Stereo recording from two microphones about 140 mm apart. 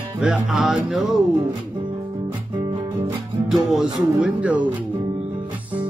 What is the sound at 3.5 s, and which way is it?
Music, centre (ahead or behind).